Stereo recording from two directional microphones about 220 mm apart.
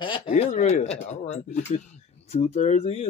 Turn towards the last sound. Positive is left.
turn(degrees=30)  # may be behind; listen again after turning